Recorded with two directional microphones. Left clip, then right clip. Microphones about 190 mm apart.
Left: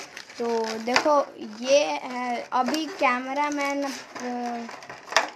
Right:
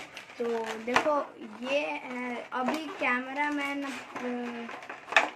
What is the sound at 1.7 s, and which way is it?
Speech, 30° left (ahead or behind).